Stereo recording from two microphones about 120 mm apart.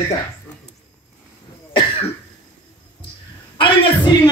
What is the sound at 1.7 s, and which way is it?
Cough, 50° left (ahead or behind).